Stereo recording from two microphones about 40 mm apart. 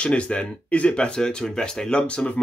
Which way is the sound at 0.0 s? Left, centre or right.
Left.